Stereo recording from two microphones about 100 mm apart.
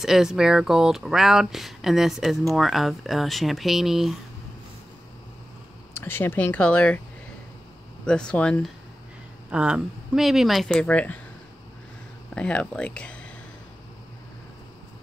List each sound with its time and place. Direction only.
0.0 s speech: 5° right (ahead or behind)
5.9 s speech: 20° left (ahead or behind)
8.0 s speech: 10° left (ahead or behind)
9.5 s speech: 10° right (ahead or behind); by 11.1 s 15° left (ahead or behind)
12.4 s speech: 10° left (ahead or behind)